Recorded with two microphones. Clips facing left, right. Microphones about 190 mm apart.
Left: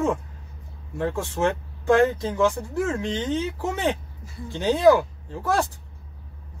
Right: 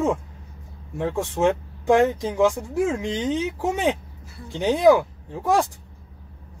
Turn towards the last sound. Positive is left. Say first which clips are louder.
# right 3 dB
turn(degrees=-15)  # may be behind; listen again after turning